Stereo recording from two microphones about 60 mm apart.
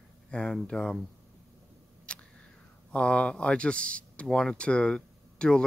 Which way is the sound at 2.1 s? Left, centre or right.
Centre.